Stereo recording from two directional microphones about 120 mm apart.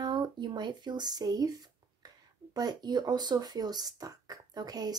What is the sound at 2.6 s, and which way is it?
Speech, 35° right (ahead or behind).